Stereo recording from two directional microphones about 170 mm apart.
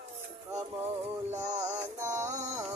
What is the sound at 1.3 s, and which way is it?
Music, 40° right (ahead or behind).